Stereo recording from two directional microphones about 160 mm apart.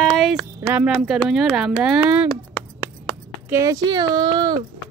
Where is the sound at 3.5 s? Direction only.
20° right (ahead or behind).